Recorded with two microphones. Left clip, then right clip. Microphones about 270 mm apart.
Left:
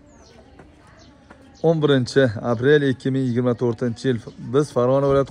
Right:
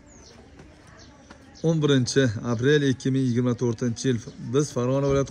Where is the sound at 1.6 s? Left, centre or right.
Centre.